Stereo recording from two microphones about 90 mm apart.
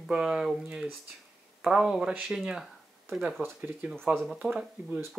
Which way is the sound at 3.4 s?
20° right (ahead or behind).